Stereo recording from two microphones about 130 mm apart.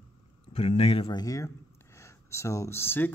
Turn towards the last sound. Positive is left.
turn(degrees=15)  # may be behind; listen again after turning